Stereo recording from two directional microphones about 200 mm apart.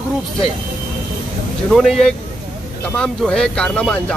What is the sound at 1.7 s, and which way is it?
Speech, centre (ahead or behind).